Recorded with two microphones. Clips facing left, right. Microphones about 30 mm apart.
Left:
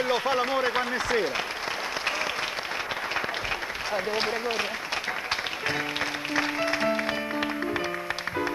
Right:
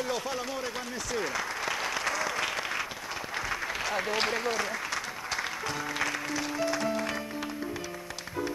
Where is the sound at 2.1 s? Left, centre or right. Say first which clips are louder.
Left 3 dB; left.